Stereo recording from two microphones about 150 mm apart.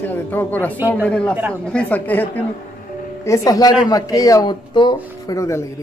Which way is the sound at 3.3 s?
25° left (ahead or behind).